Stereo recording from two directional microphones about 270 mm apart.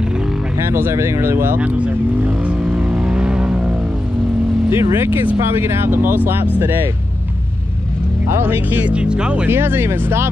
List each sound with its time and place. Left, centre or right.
0.7 s vehicle: centre
4.6 s speech: centre
8.3 s speech: centre